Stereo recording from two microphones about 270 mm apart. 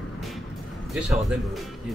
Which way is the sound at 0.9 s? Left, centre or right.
Centre.